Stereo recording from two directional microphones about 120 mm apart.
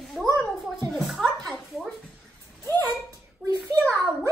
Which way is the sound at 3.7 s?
25° right (ahead or behind).